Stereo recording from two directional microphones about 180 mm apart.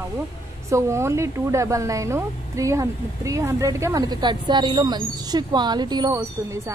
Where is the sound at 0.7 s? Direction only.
15° right (ahead or behind).